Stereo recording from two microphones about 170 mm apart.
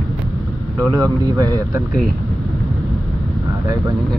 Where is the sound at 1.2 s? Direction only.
20° right (ahead or behind).